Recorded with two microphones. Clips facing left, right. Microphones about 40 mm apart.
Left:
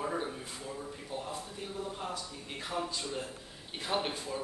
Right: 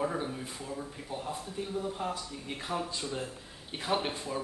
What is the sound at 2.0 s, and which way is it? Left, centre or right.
Speech, right.